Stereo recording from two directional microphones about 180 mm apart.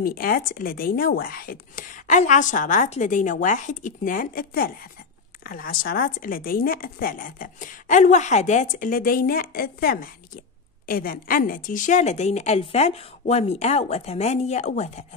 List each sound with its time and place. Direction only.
0.0 s a woman's voice: 55° left (ahead or behind)